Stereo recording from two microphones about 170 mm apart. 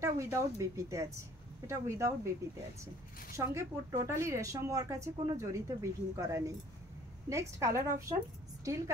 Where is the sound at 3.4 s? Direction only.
20° right (ahead or behind).